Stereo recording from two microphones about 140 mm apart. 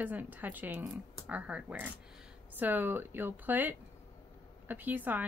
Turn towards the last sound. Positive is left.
turn(degrees=-10)  # may be behind; listen again after turning